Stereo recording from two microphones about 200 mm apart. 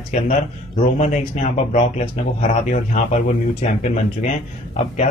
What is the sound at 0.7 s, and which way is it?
Speech, 35° left (ahead or behind).